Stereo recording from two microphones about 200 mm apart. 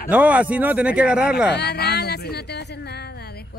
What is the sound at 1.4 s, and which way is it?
A woman's voice, 55° left (ahead or behind).